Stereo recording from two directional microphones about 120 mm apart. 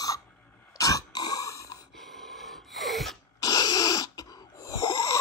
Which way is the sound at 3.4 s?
30° left (ahead or behind).